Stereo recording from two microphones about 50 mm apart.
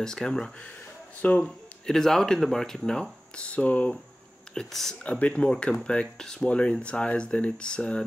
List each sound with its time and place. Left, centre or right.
0.0 s speech: centre
1.2 s speech: left
1.9 s speech: centre; by 3.9 s left
4.6 s speech: centre
4.9 s speech: centre
6.5 s speech: left